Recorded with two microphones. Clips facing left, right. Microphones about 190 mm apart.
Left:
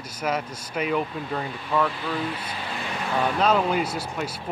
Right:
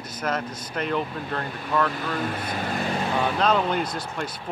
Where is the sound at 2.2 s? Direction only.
45° right (ahead or behind).